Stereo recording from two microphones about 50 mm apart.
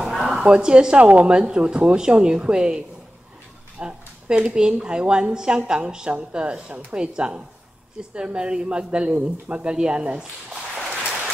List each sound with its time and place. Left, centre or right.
0.0 s a sound: centre
0.4 s a woman's voice: centre
3.8 s a woman's voice: centre